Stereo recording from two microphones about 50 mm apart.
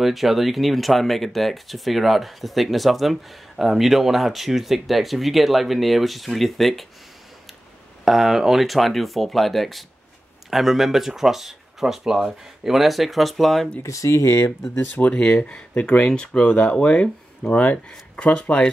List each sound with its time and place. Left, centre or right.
0.0 s speech: centre
8.0 s speech: centre
13.8 s speech: left
14.8 s speech: left; by 18.7 s centre